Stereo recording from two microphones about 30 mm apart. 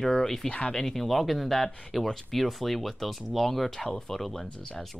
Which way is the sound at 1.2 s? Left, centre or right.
Centre.